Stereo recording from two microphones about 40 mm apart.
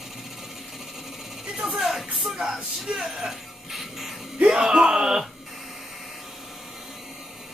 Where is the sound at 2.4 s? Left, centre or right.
Centre.